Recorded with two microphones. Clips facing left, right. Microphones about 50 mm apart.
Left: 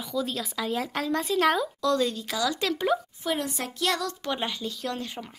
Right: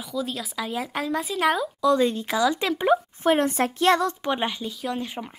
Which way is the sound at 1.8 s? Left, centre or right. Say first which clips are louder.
Right 5 dB; centre.